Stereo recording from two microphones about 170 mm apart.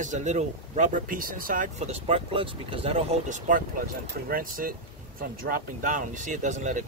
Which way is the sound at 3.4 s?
55° right (ahead or behind).